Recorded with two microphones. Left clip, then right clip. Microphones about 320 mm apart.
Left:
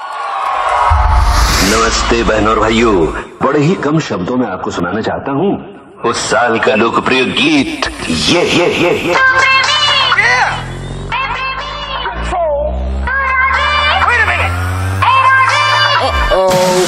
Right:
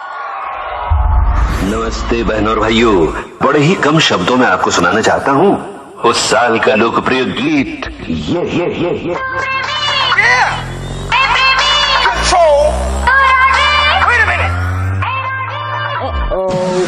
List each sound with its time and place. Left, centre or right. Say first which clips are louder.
0.5 s music: left 8 dB; left
1.1 s a sound: left 7 dB; left
2.0 s a man's voice: left 3 dB; centre; by 5.6 s right
6.0 s a man's voice: right 1 dB; centre
8.1 s speech: left 6 dB; left
9.3 s music: left 7 dB; centre
11.1 s music: right 7 dB; centre; by 12.4 s right
13.0 s music: right 4 dB; centre
15.0 s music: left 11 dB; left